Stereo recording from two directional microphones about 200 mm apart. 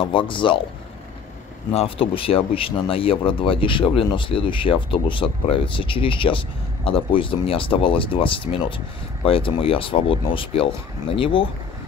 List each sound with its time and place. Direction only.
0.0 s speech: 25° left (ahead or behind)
1.7 s speech: 30° left (ahead or behind)